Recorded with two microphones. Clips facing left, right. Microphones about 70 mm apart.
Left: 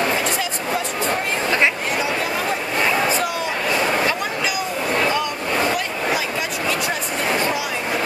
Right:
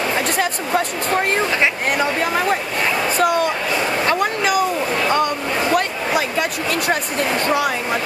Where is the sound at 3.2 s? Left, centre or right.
Right.